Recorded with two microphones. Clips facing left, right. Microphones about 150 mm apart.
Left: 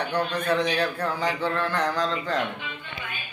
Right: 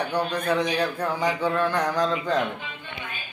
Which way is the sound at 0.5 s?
10° right (ahead or behind).